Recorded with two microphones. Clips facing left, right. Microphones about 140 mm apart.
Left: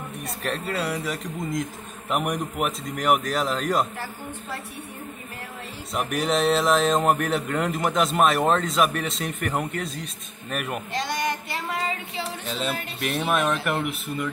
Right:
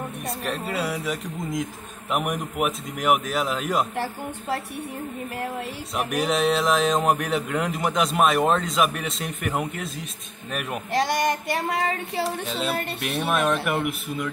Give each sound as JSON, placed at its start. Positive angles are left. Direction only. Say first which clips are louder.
{"t": 0.4, "sound": "speech", "louder": "left 1 dB", "side_deg": -5}
{"t": 5.9, "sound": "speech", "louder": "even", "side_deg": 0}
{"t": 10.9, "sound": "child singing", "louder": "right 7 dB", "side_deg": -55}
{"t": 12.4, "sound": "speech", "louder": "right 2 dB", "side_deg": 0}